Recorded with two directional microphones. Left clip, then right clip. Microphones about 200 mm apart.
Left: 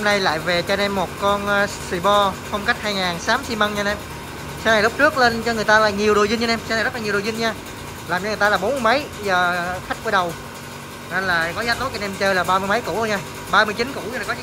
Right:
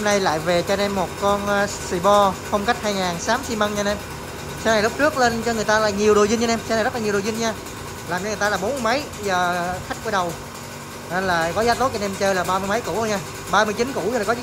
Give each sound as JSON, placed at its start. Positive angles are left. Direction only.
{"t": 0.0, "sound": "speech", "side_deg": -10}